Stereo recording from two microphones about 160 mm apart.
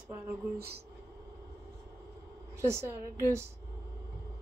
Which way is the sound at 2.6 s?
15° right (ahead or behind).